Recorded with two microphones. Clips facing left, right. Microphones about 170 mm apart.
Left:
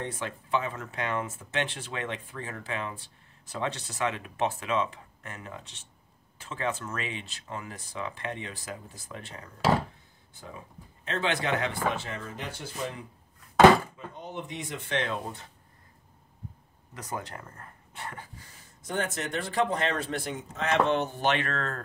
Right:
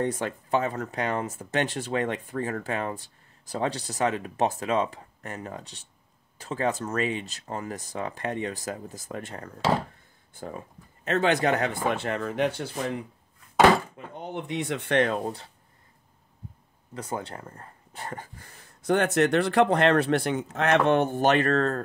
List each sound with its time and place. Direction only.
0.0 s speech: 45° right (ahead or behind)
15.2 s speech: 35° right (ahead or behind)
16.9 s speech: 30° right (ahead or behind)
18.8 s speech: 70° right (ahead or behind); by 21.8 s 40° right (ahead or behind)